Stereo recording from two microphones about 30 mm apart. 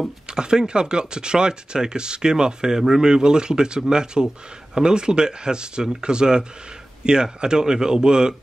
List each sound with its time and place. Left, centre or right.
0.3 s speech: right